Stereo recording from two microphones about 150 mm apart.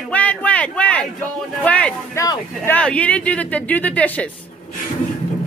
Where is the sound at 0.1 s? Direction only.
10° left (ahead or behind).